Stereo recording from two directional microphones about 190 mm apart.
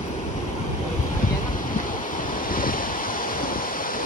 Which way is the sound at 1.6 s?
45° left (ahead or behind).